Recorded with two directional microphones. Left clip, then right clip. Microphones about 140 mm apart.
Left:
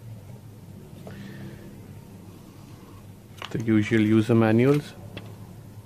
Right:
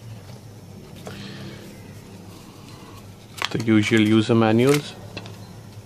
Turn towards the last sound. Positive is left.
turn(degrees=-10)  # may be behind; listen again after turning